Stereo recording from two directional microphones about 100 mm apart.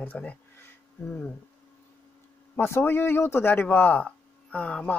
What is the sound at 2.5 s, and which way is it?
Speech, 20° left (ahead or behind).